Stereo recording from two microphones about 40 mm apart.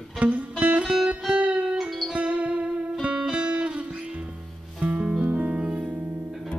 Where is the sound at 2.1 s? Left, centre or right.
Right.